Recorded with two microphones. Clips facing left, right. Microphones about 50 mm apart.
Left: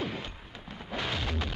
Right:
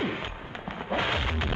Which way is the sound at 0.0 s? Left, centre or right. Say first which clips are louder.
Right 5 dB; right.